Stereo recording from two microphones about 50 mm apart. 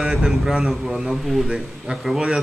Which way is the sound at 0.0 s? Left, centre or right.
Centre.